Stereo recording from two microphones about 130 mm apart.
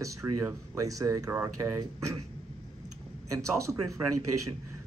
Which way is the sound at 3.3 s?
25° right (ahead or behind).